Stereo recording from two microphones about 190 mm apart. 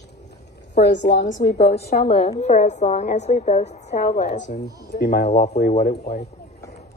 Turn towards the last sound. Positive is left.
turn(degrees=40)  # may be behind; listen again after turning